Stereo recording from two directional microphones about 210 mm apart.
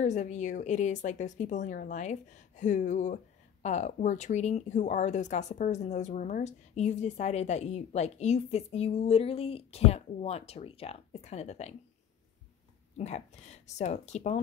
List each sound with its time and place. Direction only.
0.0 s speech: 35° left (ahead or behind)
12.9 s speech: 30° left (ahead or behind)